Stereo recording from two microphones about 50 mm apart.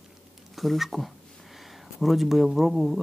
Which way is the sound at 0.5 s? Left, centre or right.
Centre.